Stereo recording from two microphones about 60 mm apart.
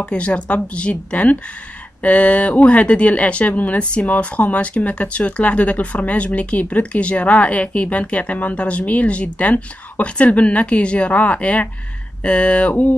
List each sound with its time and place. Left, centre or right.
0.0 s speech: centre